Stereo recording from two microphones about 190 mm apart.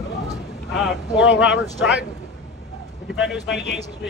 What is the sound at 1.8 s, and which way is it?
Speech, centre (ahead or behind).